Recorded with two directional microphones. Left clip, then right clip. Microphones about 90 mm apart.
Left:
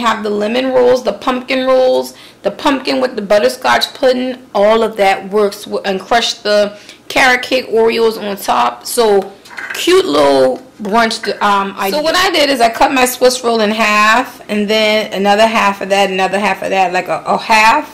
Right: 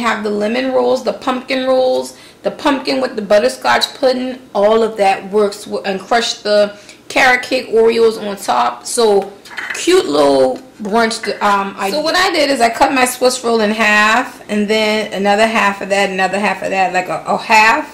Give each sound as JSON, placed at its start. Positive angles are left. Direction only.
{"t": 0.0, "sound": "speech", "side_deg": 30}
{"t": 17.5, "sound": "speech", "side_deg": 35}